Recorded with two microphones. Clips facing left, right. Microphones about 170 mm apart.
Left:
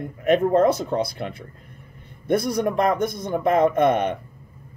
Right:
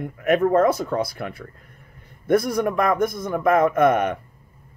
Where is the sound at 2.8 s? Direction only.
25° left (ahead or behind).